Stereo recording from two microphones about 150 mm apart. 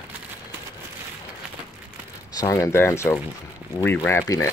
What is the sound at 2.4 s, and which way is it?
Speech, 20° left (ahead or behind).